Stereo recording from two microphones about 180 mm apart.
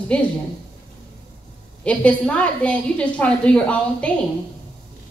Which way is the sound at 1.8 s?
5° left (ahead or behind).